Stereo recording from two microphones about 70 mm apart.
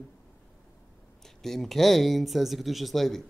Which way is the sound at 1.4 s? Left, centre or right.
Centre.